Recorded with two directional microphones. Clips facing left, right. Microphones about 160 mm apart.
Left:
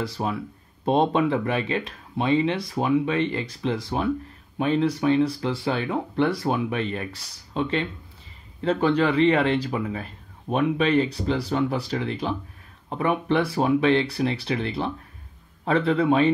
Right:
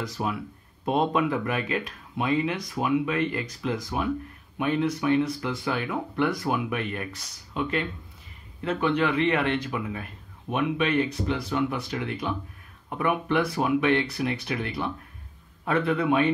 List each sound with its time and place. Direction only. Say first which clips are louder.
0.0 s speech: left 3 dB; 30° left (ahead or behind)